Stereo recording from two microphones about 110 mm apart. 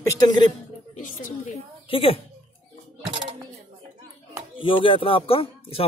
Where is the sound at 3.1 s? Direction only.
50° right (ahead or behind).